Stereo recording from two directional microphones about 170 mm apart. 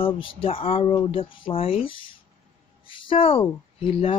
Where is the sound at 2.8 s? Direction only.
30° left (ahead or behind).